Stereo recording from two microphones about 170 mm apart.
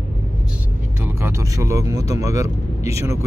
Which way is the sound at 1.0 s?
15° right (ahead or behind).